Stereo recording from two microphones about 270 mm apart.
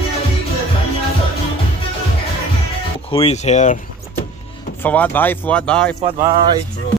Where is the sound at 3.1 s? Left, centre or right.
Left.